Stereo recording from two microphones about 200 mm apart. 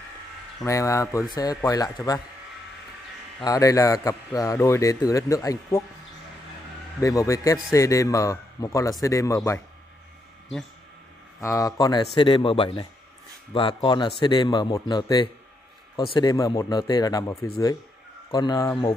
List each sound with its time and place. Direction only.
0.7 s a man's voice: 15° left (ahead or behind)
3.4 s a man's voice: 15° left (ahead or behind)
7.0 s a man's voice: 15° left (ahead or behind)
11.4 s speech: 15° left (ahead or behind)